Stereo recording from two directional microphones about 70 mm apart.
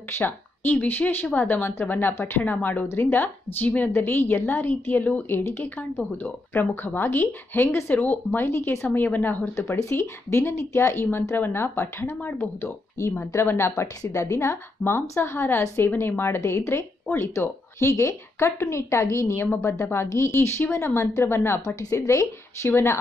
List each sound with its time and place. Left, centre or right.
0.2 s speech: left
2.9 s a woman's voice: left
8.5 s a woman's voice: left
8.8 s speech: left
9.6 s a woman's voice: left
21.5 s a woman's voice: left